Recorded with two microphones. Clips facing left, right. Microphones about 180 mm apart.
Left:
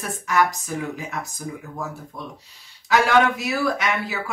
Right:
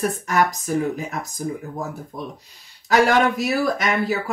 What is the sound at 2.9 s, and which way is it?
Speech, 45° right (ahead or behind).